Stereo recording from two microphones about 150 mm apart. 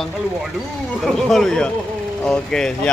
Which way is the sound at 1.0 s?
Centre (ahead or behind).